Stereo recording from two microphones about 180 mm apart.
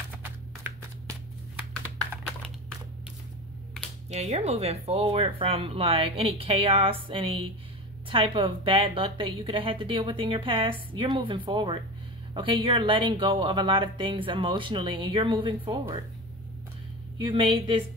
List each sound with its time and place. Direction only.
4.1 s a woman's voice: 35° right (ahead or behind)
17.2 s a woman's voice: 25° right (ahead or behind)